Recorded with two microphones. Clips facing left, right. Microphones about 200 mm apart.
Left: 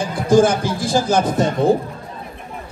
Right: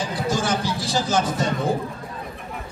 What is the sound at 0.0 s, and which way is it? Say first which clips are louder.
Speech: left 10 dB; 50° left (ahead or behind).